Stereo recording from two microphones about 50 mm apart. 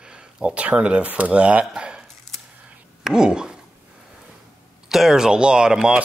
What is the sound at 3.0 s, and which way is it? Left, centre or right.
Speech, centre.